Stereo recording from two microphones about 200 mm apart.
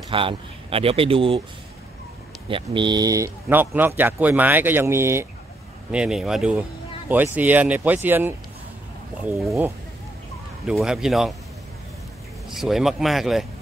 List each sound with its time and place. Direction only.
0.1 s speech: 25° right (ahead or behind)
2.5 s speech: 25° right (ahead or behind); by 9.5 s centre (ahead or behind)
10.7 s speech: centre (ahead or behind)
12.4 s speech: centre (ahead or behind)